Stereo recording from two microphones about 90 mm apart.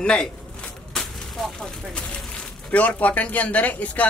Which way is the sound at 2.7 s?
15° left (ahead or behind).